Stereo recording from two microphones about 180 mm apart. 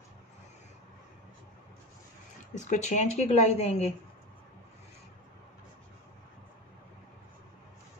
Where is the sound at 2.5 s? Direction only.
40° left (ahead or behind).